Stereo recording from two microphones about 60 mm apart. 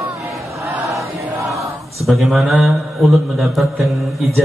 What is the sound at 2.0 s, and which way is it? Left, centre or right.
Speech, centre.